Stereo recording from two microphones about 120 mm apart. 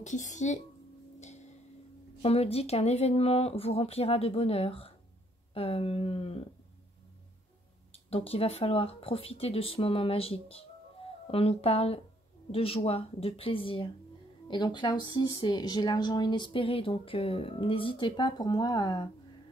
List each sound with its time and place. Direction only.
0.0 s a woman's voice: 90° left
2.2 s speech: 55° left (ahead or behind)
7.9 s speech: 55° left (ahead or behind); by 18.9 s 35° left (ahead or behind)